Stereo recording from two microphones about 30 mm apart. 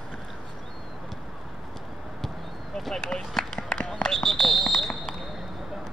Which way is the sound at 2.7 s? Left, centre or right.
Centre.